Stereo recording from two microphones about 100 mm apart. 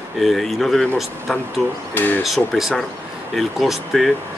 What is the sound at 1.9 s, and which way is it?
Speech, 20° left (ahead or behind).